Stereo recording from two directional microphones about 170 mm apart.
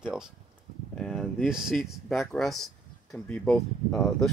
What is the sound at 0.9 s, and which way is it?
Speech, centre (ahead or behind).